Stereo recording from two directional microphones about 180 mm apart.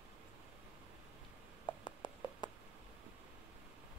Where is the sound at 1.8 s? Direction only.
25° left (ahead or behind).